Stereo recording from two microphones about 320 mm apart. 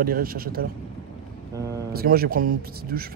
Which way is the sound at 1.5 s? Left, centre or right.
Centre.